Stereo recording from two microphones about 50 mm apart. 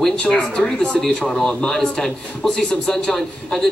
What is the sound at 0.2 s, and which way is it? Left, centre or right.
A man's voice, centre.